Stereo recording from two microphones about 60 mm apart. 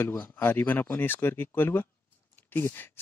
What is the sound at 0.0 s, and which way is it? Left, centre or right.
Speech, left.